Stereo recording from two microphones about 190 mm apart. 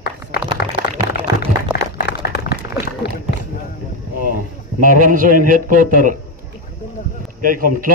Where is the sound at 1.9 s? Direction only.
55° left (ahead or behind).